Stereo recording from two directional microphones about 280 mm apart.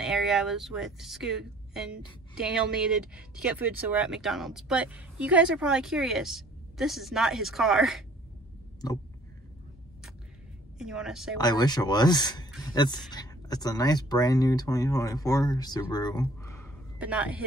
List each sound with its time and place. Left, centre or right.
0.0 s speech: centre
10.8 s speech: centre
11.3 s speech: centre
17.0 s speech: centre